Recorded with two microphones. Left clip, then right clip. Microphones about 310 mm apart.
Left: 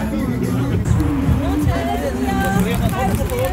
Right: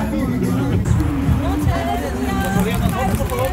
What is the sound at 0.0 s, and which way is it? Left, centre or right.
Music, centre.